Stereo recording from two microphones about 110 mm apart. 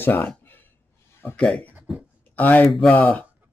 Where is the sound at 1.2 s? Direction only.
20° left (ahead or behind).